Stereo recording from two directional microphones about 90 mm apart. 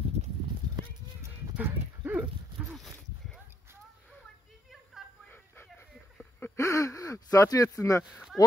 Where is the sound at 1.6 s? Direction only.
20° right (ahead or behind).